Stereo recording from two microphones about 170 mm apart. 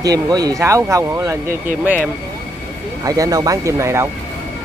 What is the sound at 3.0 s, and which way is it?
Speech, 20° right (ahead or behind).